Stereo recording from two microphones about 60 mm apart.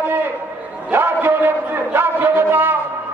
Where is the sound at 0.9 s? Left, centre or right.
Right.